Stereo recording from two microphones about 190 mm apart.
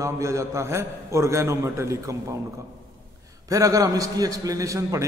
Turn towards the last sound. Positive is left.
turn(degrees=-15)  # may be behind; listen again after turning